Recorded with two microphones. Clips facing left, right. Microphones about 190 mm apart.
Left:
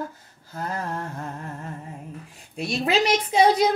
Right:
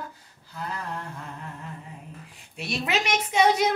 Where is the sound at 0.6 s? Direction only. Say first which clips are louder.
Left 4 dB; 45° left (ahead or behind).